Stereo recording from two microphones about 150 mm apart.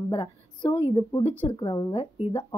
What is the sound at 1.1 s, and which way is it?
Speech, 20° left (ahead or behind).